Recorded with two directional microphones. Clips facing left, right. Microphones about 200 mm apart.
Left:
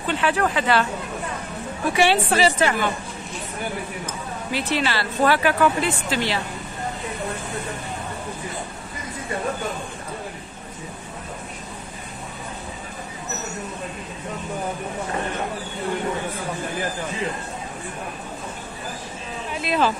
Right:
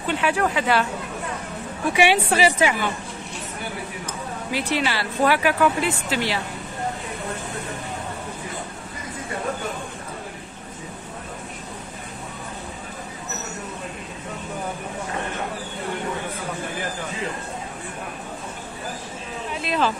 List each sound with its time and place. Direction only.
0.0 s speech: 10° right (ahead or behind)
2.0 s speech: 10° right (ahead or behind)
4.5 s speech: 15° right (ahead or behind)
19.5 s speech: 5° left (ahead or behind)